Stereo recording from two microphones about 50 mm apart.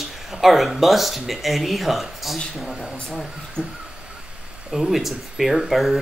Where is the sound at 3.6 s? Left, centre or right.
Right.